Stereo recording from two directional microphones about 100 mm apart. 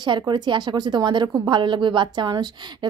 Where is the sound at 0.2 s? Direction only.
45° right (ahead or behind).